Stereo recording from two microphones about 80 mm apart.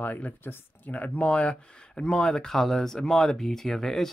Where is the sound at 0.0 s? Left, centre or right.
Left.